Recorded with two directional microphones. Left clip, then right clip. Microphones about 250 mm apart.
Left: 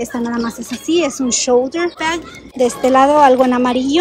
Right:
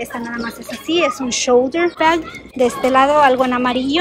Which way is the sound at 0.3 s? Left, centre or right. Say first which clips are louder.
Left 3 dB; centre.